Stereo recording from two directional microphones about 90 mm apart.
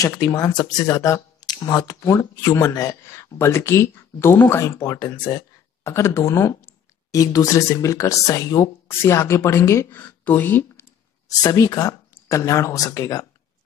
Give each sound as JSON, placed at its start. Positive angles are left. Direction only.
{"t": 0.0, "sound": "speech", "side_deg": 35}
{"t": 0.5, "sound": "speech", "side_deg": 50}
{"t": 0.8, "sound": "speech", "side_deg": 35}
{"t": 5.9, "sound": "speech", "side_deg": 30}
{"t": 9.8, "sound": "speech", "side_deg": 20}
{"t": 11.2, "sound": "speech", "side_deg": 45}